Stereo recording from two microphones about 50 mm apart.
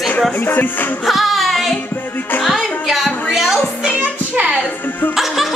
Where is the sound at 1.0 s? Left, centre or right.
Centre.